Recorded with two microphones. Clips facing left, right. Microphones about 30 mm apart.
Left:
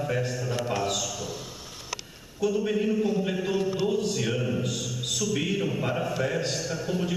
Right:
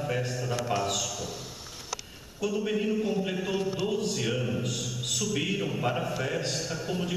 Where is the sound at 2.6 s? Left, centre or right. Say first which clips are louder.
Left 1 dB; centre.